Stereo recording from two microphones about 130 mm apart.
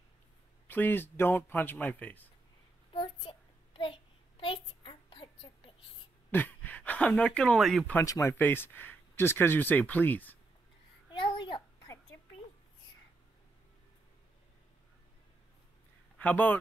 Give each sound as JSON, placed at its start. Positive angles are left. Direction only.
{"t": 0.7, "sound": "speech", "side_deg": 15}
{"t": 2.9, "sound": "child singing", "side_deg": 45}
{"t": 6.3, "sound": "speech", "side_deg": 15}
{"t": 8.0, "sound": "speech", "side_deg": 25}
{"t": 11.1, "sound": "babbling", "side_deg": 40}
{"t": 16.2, "sound": "speech", "side_deg": 15}